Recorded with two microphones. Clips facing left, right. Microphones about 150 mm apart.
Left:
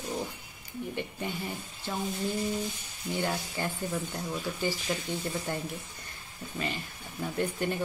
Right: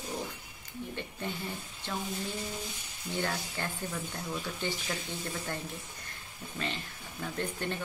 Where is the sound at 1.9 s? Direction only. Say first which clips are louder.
Left 2 dB; 10° left (ahead or behind).